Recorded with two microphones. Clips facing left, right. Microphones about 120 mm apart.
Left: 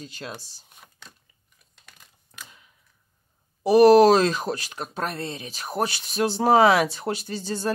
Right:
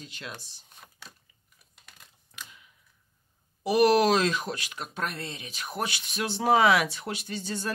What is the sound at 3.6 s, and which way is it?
Speech, 35° left (ahead or behind).